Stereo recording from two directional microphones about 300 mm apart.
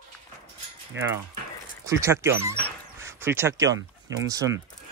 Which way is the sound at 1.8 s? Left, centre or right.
Centre.